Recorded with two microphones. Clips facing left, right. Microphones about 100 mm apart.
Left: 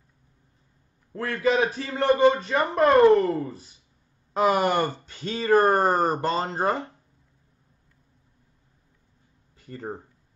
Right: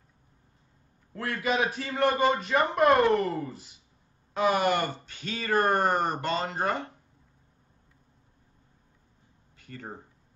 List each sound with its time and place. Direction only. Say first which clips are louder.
1.1 s speech: left 5 dB; 35° left (ahead or behind)
9.6 s speech: left 7 dB; 35° left (ahead or behind)